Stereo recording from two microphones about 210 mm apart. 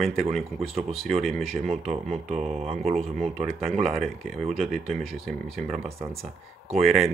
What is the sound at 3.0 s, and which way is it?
Speech, centre (ahead or behind).